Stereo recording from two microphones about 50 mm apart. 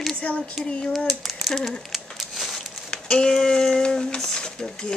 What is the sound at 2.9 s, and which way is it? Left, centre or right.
Speech, centre.